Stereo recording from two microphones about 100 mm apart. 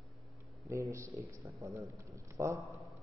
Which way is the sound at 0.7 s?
30° right (ahead or behind).